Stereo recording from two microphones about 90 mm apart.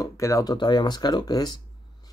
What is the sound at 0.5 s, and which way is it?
Speech, 55° left (ahead or behind).